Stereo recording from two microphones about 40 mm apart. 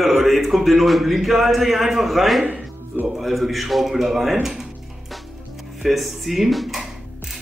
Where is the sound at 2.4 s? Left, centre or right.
Right.